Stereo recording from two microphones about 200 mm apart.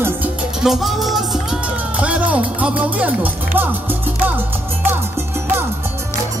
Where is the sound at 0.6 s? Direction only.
Centre (ahead or behind).